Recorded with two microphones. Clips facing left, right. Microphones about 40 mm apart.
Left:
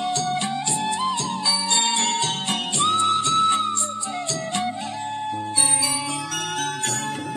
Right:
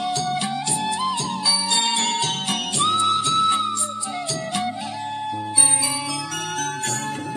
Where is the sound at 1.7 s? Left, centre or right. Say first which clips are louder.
Even; centre.